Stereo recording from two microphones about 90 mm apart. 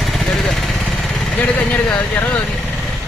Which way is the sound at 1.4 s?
20° left (ahead or behind).